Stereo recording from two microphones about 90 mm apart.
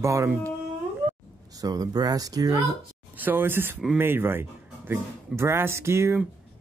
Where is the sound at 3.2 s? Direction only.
20° right (ahead or behind).